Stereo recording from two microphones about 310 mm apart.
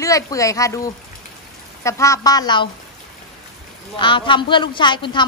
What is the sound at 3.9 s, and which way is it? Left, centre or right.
A woman's voice, centre.